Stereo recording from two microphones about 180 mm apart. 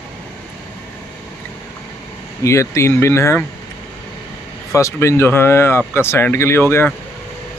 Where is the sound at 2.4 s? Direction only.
15° left (ahead or behind).